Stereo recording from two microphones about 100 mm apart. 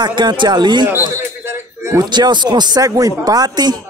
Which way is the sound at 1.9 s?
45° right (ahead or behind).